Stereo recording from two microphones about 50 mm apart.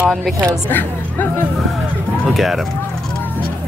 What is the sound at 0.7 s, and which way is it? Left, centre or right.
Speech, left.